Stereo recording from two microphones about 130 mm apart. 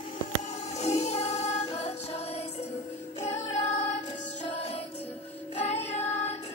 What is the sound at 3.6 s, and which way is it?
Music, 65° left (ahead or behind).